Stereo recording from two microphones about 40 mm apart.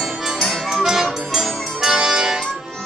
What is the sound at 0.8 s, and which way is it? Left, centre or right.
Music, centre.